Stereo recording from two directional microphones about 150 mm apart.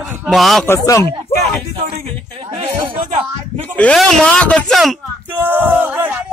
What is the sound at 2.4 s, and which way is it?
Speech, 40° right (ahead or behind).